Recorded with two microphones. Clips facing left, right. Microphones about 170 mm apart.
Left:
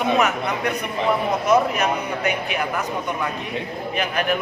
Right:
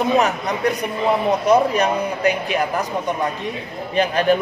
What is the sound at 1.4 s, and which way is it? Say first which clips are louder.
Speech: right 2 dB; 35° right (ahead or behind).